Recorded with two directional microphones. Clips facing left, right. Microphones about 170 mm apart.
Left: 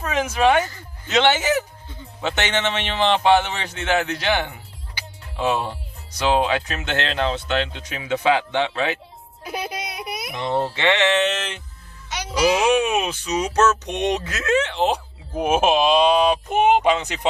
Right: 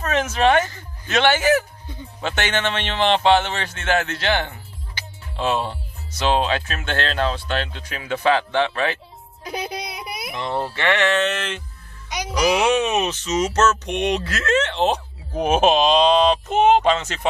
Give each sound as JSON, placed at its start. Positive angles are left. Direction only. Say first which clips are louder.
{"t": 0.0, "sound": "a man's voice", "louder": "even", "side_deg": 10}
{"t": 9.4, "sound": "music", "louder": "even", "side_deg": 5}
{"t": 10.4, "sound": "speech", "louder": "left 2 dB", "side_deg": 20}
{"t": 12.1, "sound": "a sound", "louder": "right 2 dB", "side_deg": -15}
{"t": 12.4, "sound": "a man's voice", "louder": "left 1 dB", "side_deg": 10}